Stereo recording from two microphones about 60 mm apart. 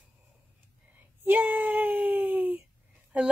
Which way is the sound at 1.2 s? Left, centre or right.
Right.